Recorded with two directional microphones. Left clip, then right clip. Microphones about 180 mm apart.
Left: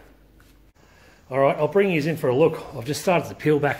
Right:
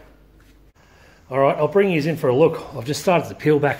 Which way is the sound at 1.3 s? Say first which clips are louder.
Right 2 dB; centre (ahead or behind).